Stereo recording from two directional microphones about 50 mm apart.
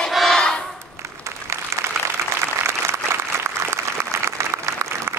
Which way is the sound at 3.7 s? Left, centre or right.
Right.